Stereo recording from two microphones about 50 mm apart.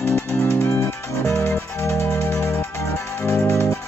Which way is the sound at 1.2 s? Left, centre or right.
Left.